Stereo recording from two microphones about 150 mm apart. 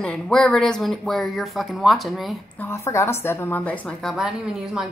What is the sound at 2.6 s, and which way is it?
A woman's voice, 20° left (ahead or behind).